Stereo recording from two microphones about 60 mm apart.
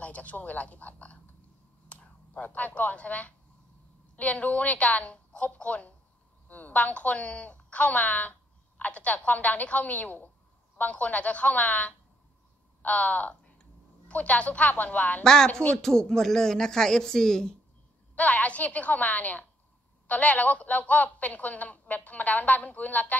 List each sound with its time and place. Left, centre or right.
0.0 s a woman's voice: left
15.2 s speech: centre
18.1 s a woman's voice: left